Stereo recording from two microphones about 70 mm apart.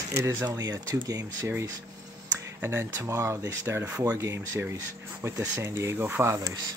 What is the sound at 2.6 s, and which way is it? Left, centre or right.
Speech, right.